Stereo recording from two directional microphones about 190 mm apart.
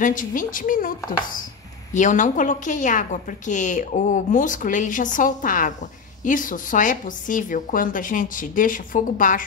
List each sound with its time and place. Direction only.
0.0 s a woman's voice: 45° left (ahead or behind)
2.0 s a woman's voice: 40° left (ahead or behind)